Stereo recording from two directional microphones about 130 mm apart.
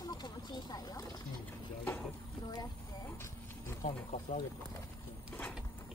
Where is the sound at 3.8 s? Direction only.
70° left (ahead or behind).